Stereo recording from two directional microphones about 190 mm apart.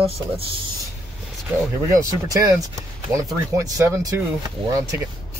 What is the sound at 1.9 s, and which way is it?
Speech, 15° right (ahead or behind).